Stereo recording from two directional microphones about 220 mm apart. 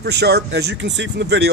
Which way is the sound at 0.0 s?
50° right (ahead or behind).